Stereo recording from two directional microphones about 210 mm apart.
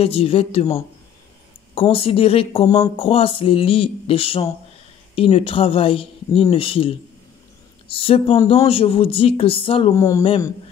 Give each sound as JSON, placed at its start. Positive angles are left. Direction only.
{"t": 0.0, "sound": "a woman's voice", "side_deg": 25}
{"t": 1.8, "sound": "a woman's voice", "side_deg": 25}
{"t": 7.9, "sound": "a woman's voice", "side_deg": 25}
{"t": 9.9, "sound": "speech", "side_deg": 15}